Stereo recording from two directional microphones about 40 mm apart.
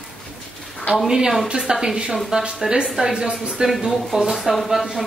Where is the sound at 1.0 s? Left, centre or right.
Centre.